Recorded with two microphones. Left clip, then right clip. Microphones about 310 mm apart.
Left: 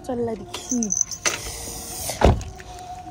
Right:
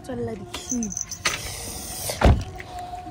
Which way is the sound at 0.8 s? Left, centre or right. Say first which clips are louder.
Left 4 dB; centre.